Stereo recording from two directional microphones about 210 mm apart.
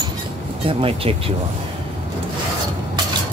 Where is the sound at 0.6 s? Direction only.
25° right (ahead or behind).